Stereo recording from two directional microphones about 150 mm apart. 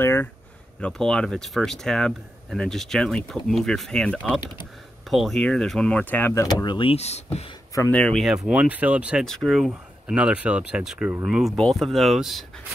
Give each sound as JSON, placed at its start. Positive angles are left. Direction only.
{"t": 0.0, "sound": "a sound", "side_deg": 15}
{"t": 0.7, "sound": "speech", "side_deg": 5}
{"t": 6.4, "sound": "speech", "side_deg": 30}
{"t": 7.9, "sound": "speech", "side_deg": 5}
{"t": 9.2, "sound": "speech", "side_deg": 5}